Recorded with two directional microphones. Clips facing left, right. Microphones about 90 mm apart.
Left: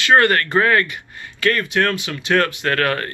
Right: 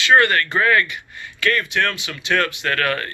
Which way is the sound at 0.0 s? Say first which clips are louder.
Left 1 dB; 40° left (ahead or behind).